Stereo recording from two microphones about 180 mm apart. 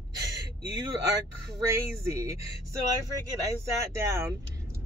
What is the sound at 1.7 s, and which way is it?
Speech, 15° right (ahead or behind).